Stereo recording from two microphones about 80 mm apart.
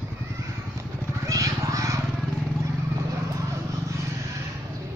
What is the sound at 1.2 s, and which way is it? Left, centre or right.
Vehicle, right.